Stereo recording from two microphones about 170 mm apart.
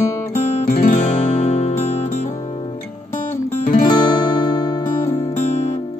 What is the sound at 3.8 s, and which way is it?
Music, 25° left (ahead or behind).